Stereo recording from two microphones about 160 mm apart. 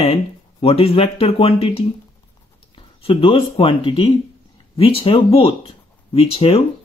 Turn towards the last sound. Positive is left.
turn(degrees=40)  # may be behind; listen again after turning